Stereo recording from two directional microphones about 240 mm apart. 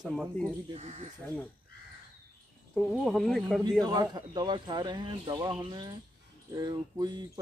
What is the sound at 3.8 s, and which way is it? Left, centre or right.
Speech, centre.